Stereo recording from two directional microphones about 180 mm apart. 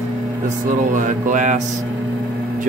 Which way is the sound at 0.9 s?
45° right (ahead or behind).